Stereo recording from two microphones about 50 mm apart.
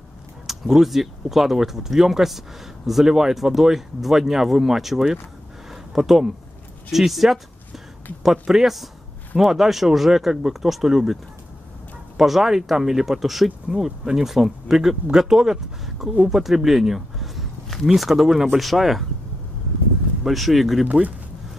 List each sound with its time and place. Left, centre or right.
0.5 s speech: centre
5.7 s a sound: centre
6.9 s speech: centre
12.2 s speech: centre
16.3 s a sound: centre
17.8 s speech: centre
20.2 s speech: centre
20.8 s speech: right